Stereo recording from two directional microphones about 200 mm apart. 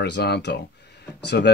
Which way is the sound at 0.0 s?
55° left (ahead or behind).